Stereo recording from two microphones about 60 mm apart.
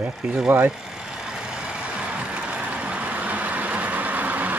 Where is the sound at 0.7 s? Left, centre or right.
Centre.